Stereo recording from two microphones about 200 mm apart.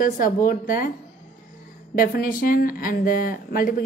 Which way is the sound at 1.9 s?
45° left (ahead or behind).